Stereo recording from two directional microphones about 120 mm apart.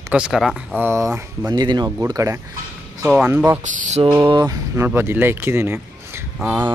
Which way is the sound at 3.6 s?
90° right.